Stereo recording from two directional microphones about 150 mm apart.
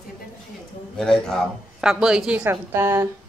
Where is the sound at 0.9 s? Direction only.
5° left (ahead or behind); by 3.1 s 20° right (ahead or behind).